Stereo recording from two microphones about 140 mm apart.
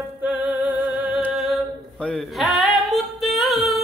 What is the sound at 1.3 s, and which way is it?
Singing, centre (ahead or behind).